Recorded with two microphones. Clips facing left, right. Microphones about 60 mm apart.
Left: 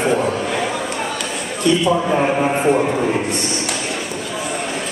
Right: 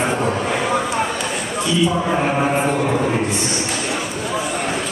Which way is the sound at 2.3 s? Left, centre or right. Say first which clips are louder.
Left 1 dB; centre.